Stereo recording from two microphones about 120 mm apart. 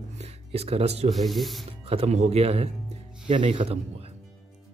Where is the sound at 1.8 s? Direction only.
55° right (ahead or behind).